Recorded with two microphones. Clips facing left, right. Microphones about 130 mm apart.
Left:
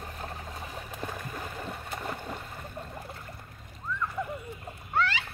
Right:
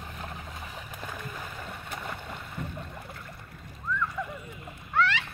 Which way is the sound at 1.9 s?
30° left (ahead or behind).